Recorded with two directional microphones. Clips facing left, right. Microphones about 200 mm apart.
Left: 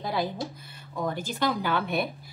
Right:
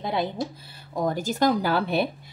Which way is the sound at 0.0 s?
25° right (ahead or behind).